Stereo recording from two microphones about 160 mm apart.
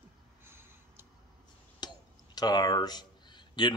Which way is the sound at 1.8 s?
25° left (ahead or behind).